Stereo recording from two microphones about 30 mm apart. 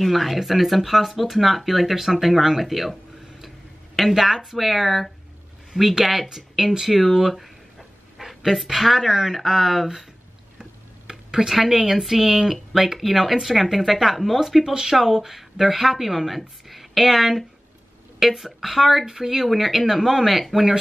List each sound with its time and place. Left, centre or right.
0.0 s speech: centre
2.6 s a sound: centre
4.2 s speech: centre
9.0 s speech: centre
9.4 s speech: centre
10.6 s a sound: right
11.6 s speech: centre
14.6 s speech: centre
15.0 s speech: centre
20.5 s speech: centre